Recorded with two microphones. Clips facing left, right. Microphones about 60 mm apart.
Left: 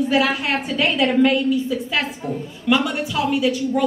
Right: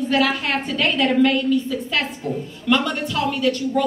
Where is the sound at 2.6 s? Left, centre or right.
Centre.